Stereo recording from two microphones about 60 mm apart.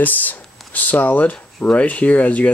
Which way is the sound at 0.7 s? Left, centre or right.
Left.